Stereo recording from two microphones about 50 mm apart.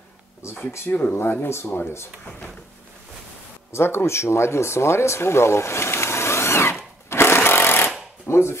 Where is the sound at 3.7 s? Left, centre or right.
Left.